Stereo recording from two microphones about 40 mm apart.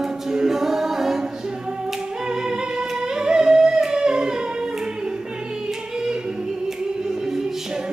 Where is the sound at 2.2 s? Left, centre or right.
Centre.